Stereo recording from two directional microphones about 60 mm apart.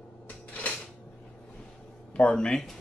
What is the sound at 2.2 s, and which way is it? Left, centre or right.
Speech, centre.